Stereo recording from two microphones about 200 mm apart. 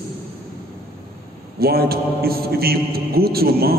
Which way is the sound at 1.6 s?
50° right (ahead or behind).